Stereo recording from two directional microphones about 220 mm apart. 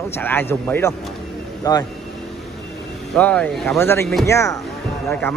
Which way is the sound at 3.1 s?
5° left (ahead or behind).